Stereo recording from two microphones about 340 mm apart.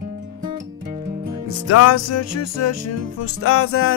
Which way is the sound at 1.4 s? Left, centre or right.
Left.